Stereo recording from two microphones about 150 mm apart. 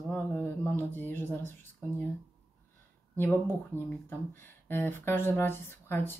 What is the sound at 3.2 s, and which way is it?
Speech, 15° left (ahead or behind).